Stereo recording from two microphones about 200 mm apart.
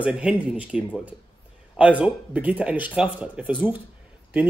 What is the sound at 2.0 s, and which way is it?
Speech, 5° right (ahead or behind).